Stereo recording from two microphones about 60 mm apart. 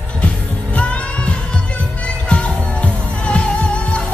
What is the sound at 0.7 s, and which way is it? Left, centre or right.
Music, left.